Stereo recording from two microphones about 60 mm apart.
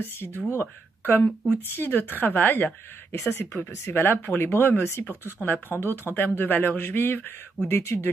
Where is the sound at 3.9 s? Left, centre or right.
Left.